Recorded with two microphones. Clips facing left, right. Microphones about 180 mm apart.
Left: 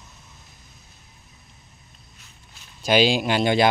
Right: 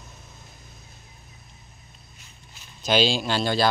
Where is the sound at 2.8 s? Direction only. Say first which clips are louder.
Left 3 dB; 10° left (ahead or behind).